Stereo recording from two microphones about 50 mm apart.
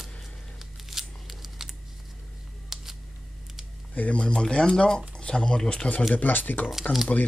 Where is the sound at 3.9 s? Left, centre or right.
Left.